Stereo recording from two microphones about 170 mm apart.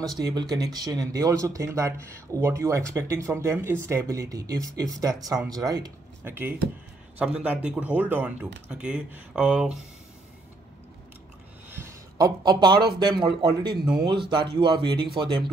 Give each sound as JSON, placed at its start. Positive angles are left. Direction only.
{"t": 0.0, "sound": "speech", "side_deg": -25}
{"t": 11.7, "sound": "a sound", "side_deg": -15}
{"t": 12.4, "sound": "speech", "side_deg": -25}